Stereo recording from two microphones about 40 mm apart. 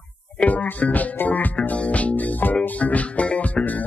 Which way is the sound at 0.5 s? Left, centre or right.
Left.